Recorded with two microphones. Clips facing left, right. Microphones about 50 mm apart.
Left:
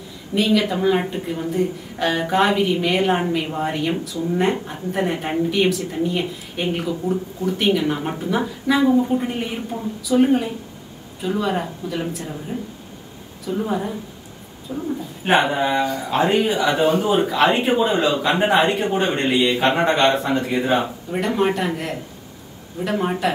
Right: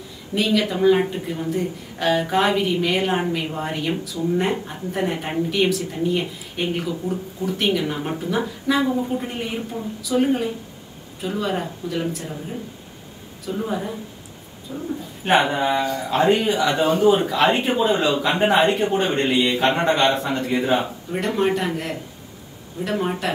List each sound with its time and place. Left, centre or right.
0.3 s speech: centre
13.5 s speech: centre
14.7 s a man's voice: centre
15.2 s speech: centre